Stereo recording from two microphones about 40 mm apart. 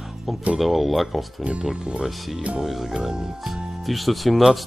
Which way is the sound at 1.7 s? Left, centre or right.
Centre.